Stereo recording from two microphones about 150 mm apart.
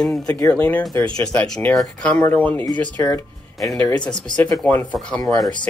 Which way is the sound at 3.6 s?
10° left (ahead or behind).